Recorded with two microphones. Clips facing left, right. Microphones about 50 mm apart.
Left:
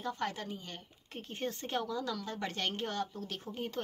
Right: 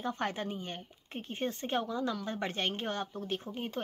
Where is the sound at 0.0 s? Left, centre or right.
Right.